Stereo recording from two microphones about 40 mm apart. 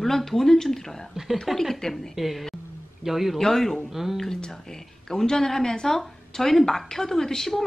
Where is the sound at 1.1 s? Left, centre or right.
Centre.